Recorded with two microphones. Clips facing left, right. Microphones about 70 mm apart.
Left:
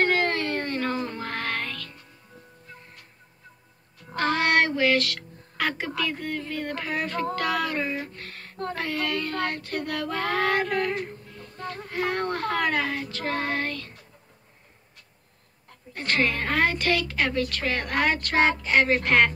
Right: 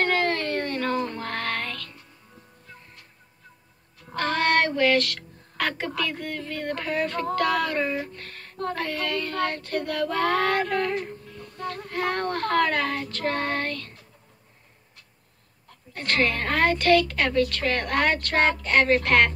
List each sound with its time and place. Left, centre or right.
0.0 s music: centre
4.1 s child singing: centre
12.2 s child singing: centre
12.5 s child singing: centre
15.9 s child singing: centre